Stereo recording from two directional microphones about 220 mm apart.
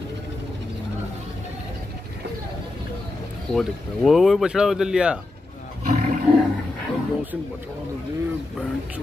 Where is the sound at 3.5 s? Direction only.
Centre (ahead or behind).